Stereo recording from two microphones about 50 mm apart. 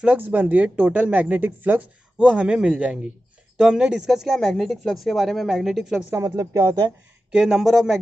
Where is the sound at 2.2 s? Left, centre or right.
Centre.